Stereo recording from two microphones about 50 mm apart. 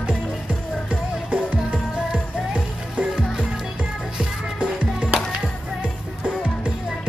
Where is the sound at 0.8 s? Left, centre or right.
Centre.